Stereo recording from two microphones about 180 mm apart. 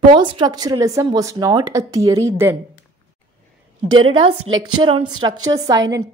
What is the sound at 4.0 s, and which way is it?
A woman's voice, 30° right (ahead or behind).